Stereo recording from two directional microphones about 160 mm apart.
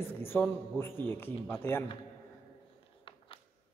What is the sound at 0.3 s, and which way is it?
A man's voice, 15° left (ahead or behind).